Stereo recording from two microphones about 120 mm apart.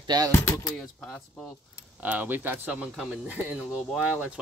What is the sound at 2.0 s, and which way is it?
Speech, 15° right (ahead or behind).